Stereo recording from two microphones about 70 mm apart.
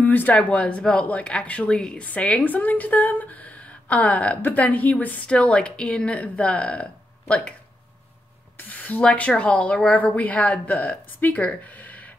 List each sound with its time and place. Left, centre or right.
0.0 s a sound: left
0.3 s a woman's voice: centre
8.5 s a woman's voice: left